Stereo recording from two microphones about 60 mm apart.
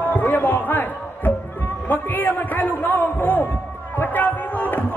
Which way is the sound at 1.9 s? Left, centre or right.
Left.